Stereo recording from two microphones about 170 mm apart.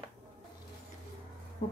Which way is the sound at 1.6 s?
45° left (ahead or behind).